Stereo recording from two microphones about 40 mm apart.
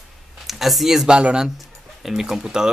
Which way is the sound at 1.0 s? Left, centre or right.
Right.